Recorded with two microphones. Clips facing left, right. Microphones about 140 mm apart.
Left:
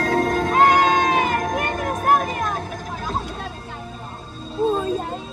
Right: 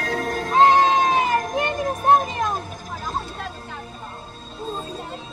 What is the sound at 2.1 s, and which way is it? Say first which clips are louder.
Vehicle: right 2 dB; 25° right (ahead or behind).